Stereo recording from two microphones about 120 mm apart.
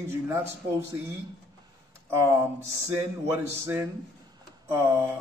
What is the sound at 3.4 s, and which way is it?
A man's voice, 20° right (ahead or behind).